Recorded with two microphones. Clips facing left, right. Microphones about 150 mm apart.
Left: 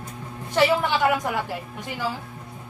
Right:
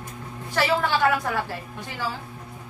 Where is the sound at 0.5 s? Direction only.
20° left (ahead or behind).